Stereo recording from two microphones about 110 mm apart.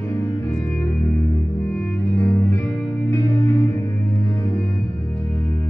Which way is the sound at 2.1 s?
20° left (ahead or behind).